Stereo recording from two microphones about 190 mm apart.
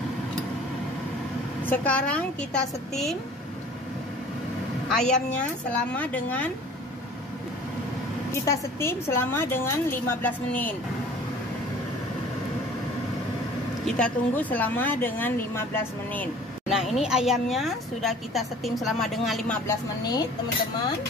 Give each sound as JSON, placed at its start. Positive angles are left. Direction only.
{"t": 1.7, "sound": "a woman's voice", "side_deg": 5}
{"t": 4.9, "sound": "a woman's voice", "side_deg": 5}
{"t": 8.3, "sound": "a woman's voice", "side_deg": 15}
{"t": 13.8, "sound": "a woman's voice", "side_deg": 5}
{"t": 16.6, "sound": "a woman's voice", "side_deg": 0}
{"t": 20.0, "sound": "speech", "side_deg": 20}